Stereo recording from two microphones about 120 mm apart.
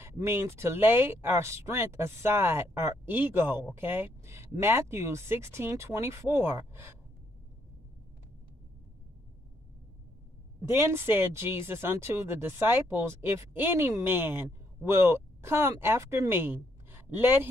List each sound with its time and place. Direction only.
0.0 s speech: 20° right (ahead or behind)
10.6 s speech: 20° right (ahead or behind)